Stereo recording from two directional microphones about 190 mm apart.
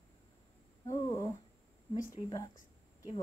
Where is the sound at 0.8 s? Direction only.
20° left (ahead or behind).